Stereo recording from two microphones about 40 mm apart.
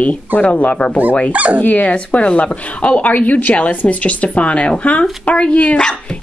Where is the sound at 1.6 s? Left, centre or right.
Left.